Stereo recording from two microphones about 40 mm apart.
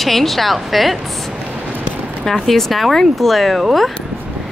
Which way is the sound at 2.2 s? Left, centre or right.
Centre.